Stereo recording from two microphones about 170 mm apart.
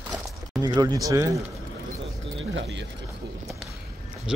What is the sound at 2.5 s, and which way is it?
Speech, 90° right.